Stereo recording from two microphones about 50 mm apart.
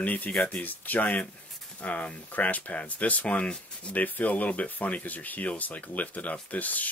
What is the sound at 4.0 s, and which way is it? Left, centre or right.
Speech, left.